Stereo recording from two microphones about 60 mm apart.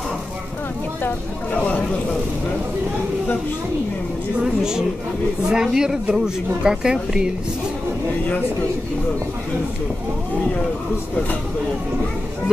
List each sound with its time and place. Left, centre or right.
1.0 s speech: left
4.4 s speech: centre